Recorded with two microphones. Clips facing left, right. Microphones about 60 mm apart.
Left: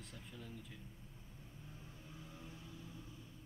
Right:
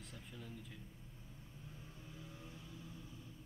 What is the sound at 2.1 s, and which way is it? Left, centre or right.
Vehicle, left.